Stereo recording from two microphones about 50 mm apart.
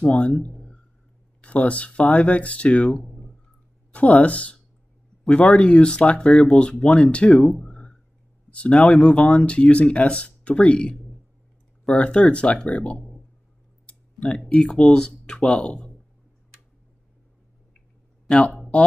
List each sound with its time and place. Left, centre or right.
0.0 s speech: left
0.5 s a sound: centre
1.4 s speech: left
3.0 s a sound: centre
3.9 s speech: left
12.0 s speech: left
13.8 s clicking: centre
14.5 s speech: centre